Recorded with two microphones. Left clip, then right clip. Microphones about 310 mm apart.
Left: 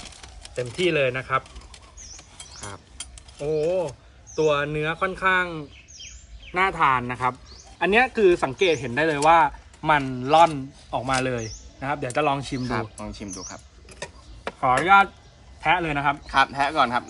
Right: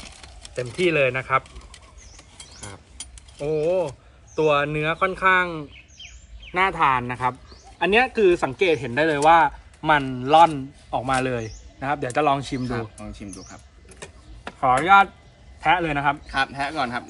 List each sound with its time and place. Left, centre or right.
0.0 s pigeon: centre
3.3 s speech: centre
12.6 s speech: centre
14.6 s speech: centre
16.3 s speech: centre